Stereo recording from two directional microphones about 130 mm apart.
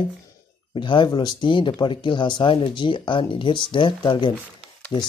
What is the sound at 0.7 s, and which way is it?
Speech, 40° left (ahead or behind).